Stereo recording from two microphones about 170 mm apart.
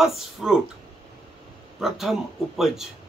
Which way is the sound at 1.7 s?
Centre (ahead or behind).